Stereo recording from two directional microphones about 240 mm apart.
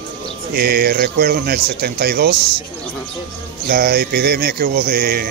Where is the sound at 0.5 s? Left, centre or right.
Right.